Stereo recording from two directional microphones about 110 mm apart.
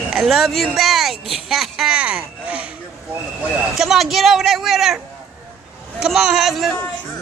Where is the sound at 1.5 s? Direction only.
5° right (ahead or behind).